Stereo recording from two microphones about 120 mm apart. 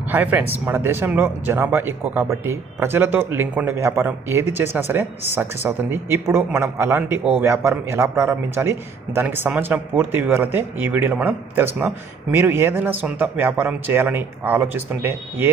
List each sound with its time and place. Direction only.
0.1 s speech: 15° right (ahead or behind)